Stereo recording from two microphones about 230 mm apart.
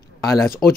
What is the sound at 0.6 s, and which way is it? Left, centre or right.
Speech, centre.